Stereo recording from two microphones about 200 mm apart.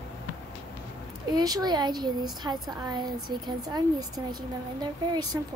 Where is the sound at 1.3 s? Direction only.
20° right (ahead or behind).